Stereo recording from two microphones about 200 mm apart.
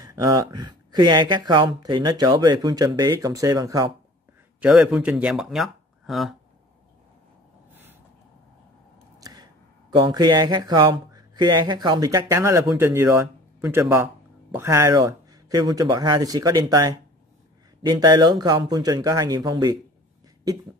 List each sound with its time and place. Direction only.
0.0 s speech: 15° right (ahead or behind)
4.6 s speech: centre (ahead or behind)
9.2 s speech: 20° right (ahead or behind)